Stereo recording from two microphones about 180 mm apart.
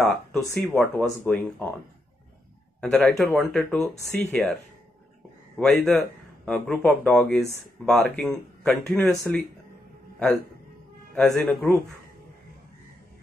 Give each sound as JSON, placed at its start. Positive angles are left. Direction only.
{"t": 0.0, "sound": "a man's voice", "side_deg": 0}
{"t": 2.8, "sound": "a man's voice", "side_deg": 5}
{"t": 5.6, "sound": "a man's voice", "side_deg": 5}
{"t": 9.1, "sound": "speech", "side_deg": 15}
{"t": 11.1, "sound": "a man's voice", "side_deg": 5}